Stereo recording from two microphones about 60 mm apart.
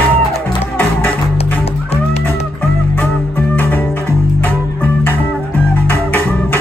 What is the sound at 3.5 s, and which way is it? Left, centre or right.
Music, left.